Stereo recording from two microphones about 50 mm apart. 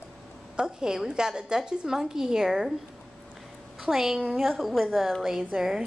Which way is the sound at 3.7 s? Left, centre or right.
Centre.